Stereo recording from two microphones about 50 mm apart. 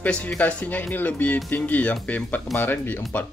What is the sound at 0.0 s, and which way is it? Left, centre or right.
Speech, left.